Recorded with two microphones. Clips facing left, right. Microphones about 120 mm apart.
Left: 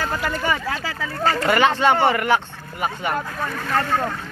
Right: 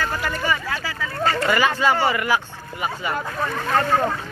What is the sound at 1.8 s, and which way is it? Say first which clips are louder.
Speech: left 2 dB; 60° left (ahead or behind).